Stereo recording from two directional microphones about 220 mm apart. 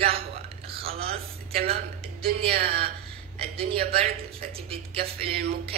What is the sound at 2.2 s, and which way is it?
Speech, 45° right (ahead or behind).